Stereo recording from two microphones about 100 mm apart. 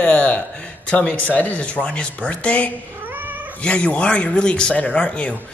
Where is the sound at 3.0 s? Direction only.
20° right (ahead or behind).